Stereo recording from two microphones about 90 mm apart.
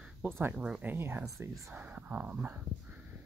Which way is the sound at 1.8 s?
20° right (ahead or behind).